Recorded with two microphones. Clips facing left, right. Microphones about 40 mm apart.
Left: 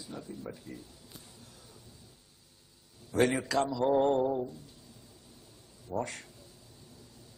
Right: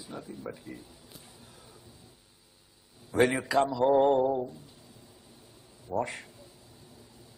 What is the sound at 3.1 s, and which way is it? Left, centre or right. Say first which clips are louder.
A man's voice: right 3 dB; centre.